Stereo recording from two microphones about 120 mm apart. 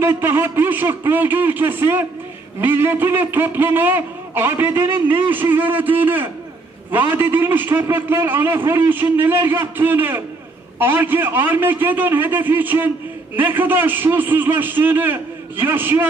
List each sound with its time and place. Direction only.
0.0 s a man's voice: 20° right (ahead or behind)